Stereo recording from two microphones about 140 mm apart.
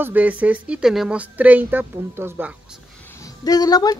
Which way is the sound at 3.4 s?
25° left (ahead or behind).